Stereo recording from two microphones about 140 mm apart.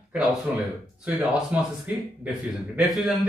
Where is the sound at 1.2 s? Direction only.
10° right (ahead or behind).